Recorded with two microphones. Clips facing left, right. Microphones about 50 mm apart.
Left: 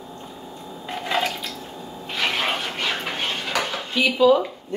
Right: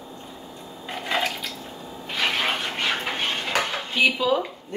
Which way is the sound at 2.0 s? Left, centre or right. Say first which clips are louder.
Even; centre.